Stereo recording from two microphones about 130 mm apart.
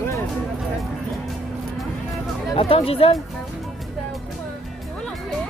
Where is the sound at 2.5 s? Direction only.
40° left (ahead or behind).